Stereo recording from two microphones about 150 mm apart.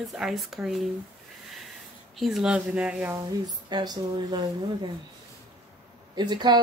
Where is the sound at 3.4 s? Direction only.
25° right (ahead or behind).